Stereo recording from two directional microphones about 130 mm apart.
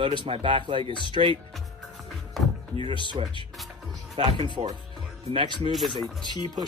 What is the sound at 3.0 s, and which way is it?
Speech, 35° right (ahead or behind).